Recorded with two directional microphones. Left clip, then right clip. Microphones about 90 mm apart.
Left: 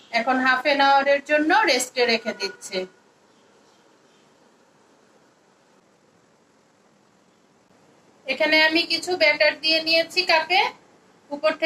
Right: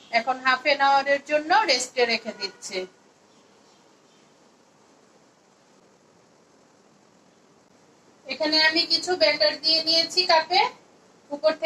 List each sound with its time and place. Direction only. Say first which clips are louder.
0.1 s a woman's voice: left 2 dB; 35° left (ahead or behind)
8.3 s a woman's voice: left 3 dB; 25° left (ahead or behind)